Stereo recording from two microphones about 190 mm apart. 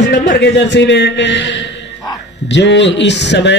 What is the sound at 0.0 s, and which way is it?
A man's voice, 60° left (ahead or behind).